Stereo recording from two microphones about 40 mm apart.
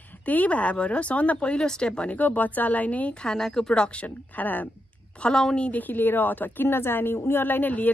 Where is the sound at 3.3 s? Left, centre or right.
Centre.